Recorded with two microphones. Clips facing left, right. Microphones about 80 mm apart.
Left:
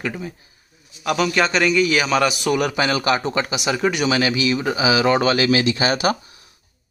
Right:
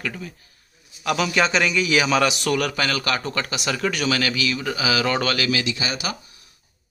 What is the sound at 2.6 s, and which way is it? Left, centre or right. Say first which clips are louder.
Speech: left 4 dB; centre.